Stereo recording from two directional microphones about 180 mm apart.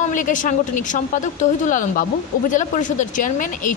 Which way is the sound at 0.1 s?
45° left (ahead or behind).